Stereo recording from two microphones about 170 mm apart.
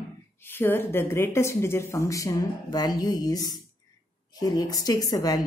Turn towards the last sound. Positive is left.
turn(degrees=20)  # may be behind; listen again after turning